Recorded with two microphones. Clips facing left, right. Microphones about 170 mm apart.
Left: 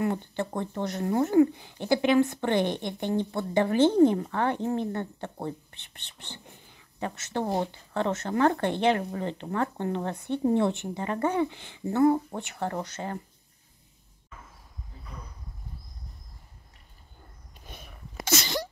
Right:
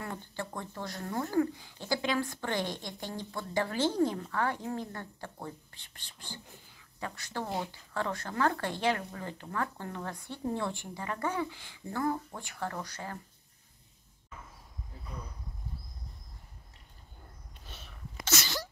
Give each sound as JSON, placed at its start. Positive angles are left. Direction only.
{"t": 0.0, "sound": "speech", "side_deg": 20}
{"t": 17.6, "sound": "a sound", "side_deg": 15}
{"t": 18.3, "sound": "sneeze", "side_deg": 20}